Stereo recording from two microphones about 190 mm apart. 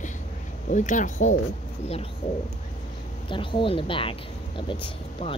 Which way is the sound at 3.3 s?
25° left (ahead or behind).